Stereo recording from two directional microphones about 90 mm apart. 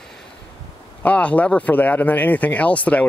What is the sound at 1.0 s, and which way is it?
Speech, 15° left (ahead or behind).